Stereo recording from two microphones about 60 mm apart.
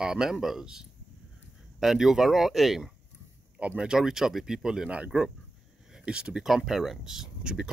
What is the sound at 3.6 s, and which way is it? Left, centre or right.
Speech, centre.